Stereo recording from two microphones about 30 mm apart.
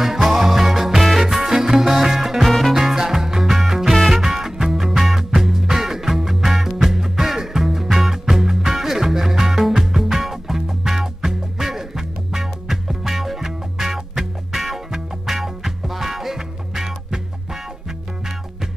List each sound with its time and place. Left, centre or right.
0.0 s music: centre
2.4 s music: centre
2.7 s music: centre
5.3 s music: centre